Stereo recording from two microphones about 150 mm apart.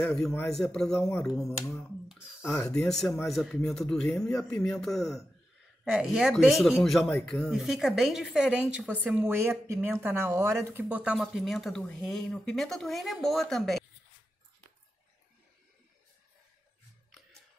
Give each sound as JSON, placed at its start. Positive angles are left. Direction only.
{"t": 0.0, "sound": "speech", "side_deg": 5}
{"t": 2.4, "sound": "speech", "side_deg": 15}
{"t": 2.7, "sound": "speech", "side_deg": 5}